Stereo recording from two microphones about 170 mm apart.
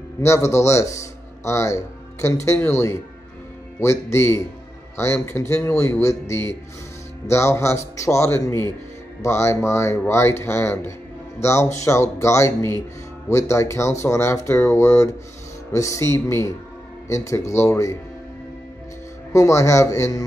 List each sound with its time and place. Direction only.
0.2 s a man's voice: 15° left (ahead or behind)
19.3 s a man's voice: 15° left (ahead or behind)